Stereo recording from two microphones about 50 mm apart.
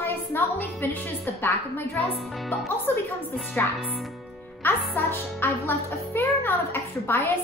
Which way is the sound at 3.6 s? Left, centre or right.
Left.